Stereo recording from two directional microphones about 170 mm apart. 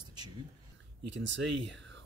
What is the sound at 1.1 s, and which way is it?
Speech, 90° right.